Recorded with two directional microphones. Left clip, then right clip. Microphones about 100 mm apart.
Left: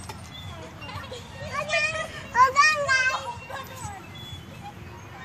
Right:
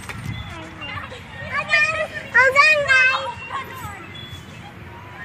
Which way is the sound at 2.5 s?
90° left.